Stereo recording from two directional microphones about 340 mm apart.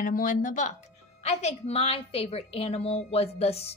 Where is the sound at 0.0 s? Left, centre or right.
Left.